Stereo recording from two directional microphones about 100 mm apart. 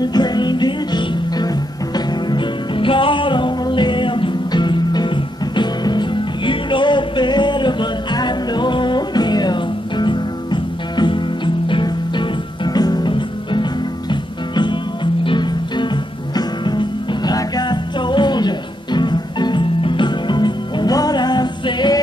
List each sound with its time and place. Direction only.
0.0 s music: 45° left (ahead or behind)